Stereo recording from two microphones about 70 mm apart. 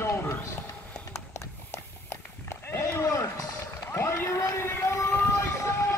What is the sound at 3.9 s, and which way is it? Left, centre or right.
Speech, left.